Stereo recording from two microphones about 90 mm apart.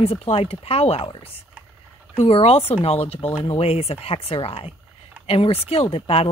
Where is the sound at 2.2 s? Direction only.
90° left.